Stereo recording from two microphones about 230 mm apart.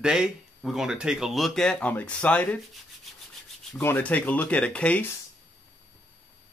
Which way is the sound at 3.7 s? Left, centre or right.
Centre.